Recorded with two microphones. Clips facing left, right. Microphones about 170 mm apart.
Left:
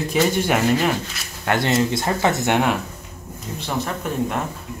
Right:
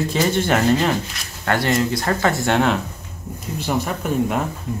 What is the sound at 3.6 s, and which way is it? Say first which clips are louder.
Speech: right 3 dB; 5° right (ahead or behind).